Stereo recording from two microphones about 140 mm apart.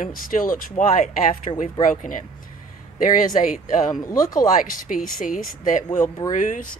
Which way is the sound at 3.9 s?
25° left (ahead or behind).